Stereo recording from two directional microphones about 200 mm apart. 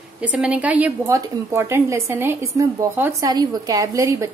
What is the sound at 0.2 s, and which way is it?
A woman's voice, 5° right (ahead or behind).